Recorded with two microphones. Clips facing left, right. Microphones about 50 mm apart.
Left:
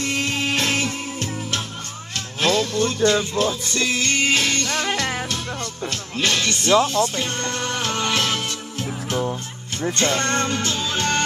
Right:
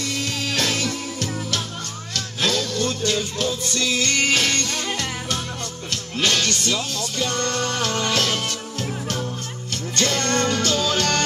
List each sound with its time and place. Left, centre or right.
0.0 s music: left
4.4 s music: right
4.6 s music: left
6.2 s speech: left
9.9 s speech: left